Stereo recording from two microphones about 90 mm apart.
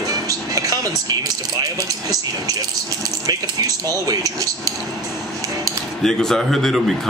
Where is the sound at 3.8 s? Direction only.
40° right (ahead or behind).